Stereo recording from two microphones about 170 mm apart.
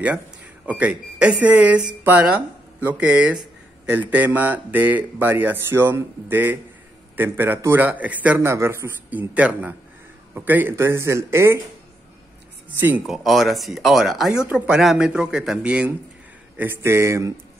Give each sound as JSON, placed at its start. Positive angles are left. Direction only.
{"t": 0.7, "sound": "a man's voice", "side_deg": -10}
{"t": 12.6, "sound": "a man's voice", "side_deg": -10}